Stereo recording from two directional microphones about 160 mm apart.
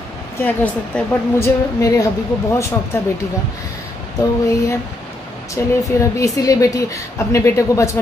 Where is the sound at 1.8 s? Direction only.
20° left (ahead or behind).